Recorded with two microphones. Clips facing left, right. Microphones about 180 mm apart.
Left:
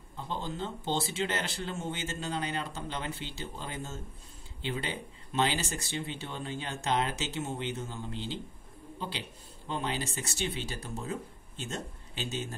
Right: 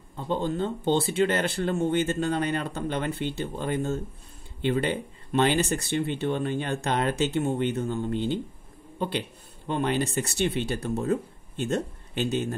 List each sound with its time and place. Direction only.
0.3 s speech: 55° right (ahead or behind)
9.7 s speech: 60° right (ahead or behind)